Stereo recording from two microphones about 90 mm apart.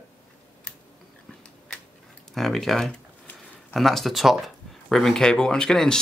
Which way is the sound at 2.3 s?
5° left (ahead or behind).